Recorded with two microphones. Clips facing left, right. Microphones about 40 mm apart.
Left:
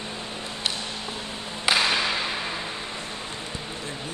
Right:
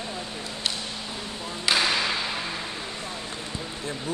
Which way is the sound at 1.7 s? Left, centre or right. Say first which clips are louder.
Left 1 dB; centre.